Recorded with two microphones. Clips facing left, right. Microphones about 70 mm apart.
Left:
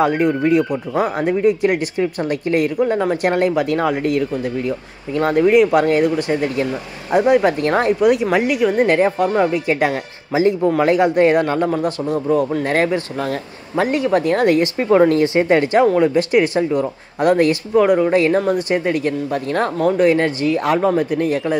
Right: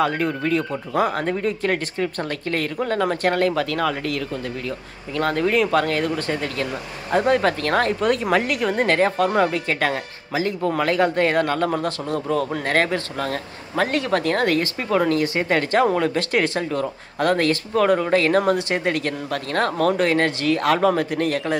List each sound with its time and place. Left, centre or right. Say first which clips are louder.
0.0 s speech: left 6 dB; centre
8.0 s speech: left 5 dB; centre
15.8 s speech: left 5 dB; centre
19.3 s speech: right 1 dB; centre
19.9 s speech: left 5 dB; centre
20.2 s speech: left 3 dB; right
20.5 s speech: left 1 dB; centre